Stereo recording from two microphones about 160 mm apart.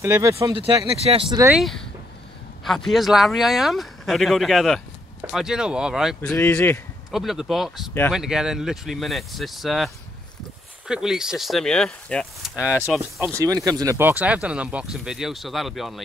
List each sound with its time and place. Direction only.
0.0 s speech: 20° right (ahead or behind)
0.6 s speech: 40° right (ahead or behind)
1.5 s speech: centre (ahead or behind)
6.3 s speech: 15° left (ahead or behind)
7.1 s speech: centre (ahead or behind)
10.9 s speech: 5° right (ahead or behind)
13.2 s speech: 20° right (ahead or behind); by 16.0 s centre (ahead or behind)